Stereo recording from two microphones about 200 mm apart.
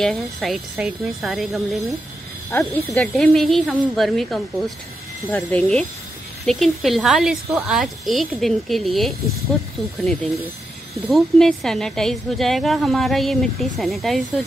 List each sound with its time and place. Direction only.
0.0 s a woman's voice: centre (ahead or behind)